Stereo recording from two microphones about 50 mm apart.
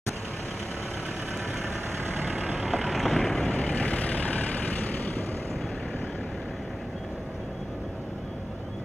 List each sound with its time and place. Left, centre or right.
2.4 s vehicle: centre
2.8 s vehicle: centre
3.3 s vehicle: left